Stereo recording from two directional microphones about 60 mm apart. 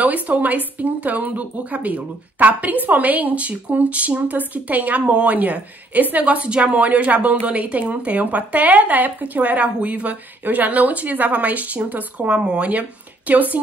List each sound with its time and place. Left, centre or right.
0.0 s speech: right